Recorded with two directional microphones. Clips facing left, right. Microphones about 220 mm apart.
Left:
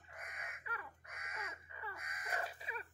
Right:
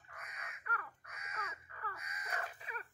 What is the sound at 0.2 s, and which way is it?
Crow, 50° left (ahead or behind).